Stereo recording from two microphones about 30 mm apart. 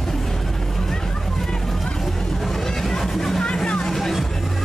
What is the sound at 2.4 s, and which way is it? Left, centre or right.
Music, centre.